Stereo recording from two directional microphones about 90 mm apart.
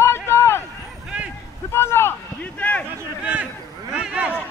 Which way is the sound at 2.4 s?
15° left (ahead or behind).